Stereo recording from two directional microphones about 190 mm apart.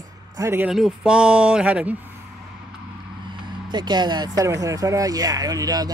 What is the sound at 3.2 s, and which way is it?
Speech, 25° right (ahead or behind).